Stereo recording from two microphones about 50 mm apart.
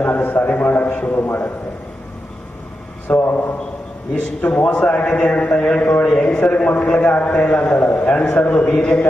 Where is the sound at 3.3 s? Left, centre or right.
Left.